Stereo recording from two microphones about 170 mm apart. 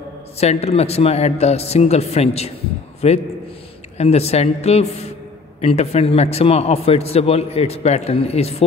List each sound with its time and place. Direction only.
0.4 s a man's voice: 40° left (ahead or behind)